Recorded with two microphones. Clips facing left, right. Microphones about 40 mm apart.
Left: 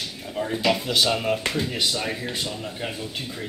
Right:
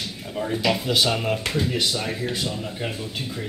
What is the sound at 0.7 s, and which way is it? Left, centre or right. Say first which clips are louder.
Speech: even; centre.